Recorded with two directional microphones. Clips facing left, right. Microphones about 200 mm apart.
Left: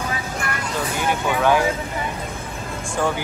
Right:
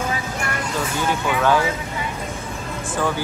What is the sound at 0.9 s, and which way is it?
Speech, 15° left (ahead or behind).